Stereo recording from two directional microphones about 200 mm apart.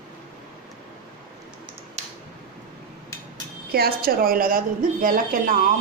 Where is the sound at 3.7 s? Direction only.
50° right (ahead or behind).